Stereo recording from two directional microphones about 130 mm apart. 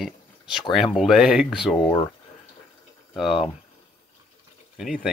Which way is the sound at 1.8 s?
30° left (ahead or behind).